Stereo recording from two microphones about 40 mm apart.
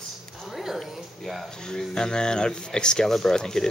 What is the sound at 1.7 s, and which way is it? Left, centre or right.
Speech, centre.